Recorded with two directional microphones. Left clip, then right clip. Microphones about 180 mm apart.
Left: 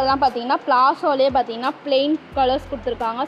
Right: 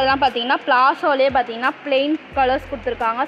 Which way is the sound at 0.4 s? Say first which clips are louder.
Right 1 dB; 10° left (ahead or behind).